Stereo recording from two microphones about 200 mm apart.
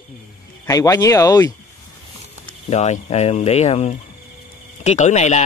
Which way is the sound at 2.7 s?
35° left (ahead or behind).